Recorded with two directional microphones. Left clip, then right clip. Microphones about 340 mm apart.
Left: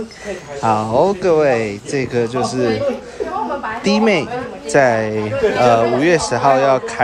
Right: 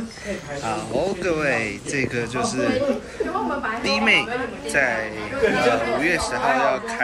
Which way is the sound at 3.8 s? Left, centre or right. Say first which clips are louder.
Left 3 dB; centre.